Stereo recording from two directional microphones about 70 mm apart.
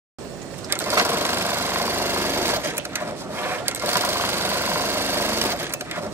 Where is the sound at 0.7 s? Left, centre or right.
Right.